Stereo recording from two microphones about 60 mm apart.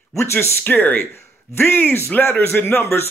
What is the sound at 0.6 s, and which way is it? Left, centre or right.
A man's voice, left.